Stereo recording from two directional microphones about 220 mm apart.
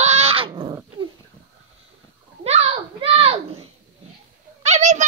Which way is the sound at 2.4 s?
30° right (ahead or behind).